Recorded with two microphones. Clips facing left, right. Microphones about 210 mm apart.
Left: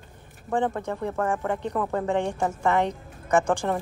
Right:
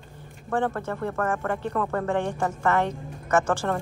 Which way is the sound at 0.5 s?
15° left (ahead or behind).